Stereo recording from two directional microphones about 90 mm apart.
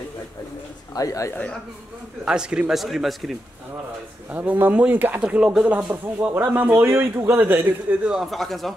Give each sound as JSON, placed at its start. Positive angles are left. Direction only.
{"t": 0.9, "sound": "speech", "side_deg": 40}
{"t": 2.2, "sound": "a man's voice", "side_deg": -10}
{"t": 4.3, "sound": "a man's voice", "side_deg": -20}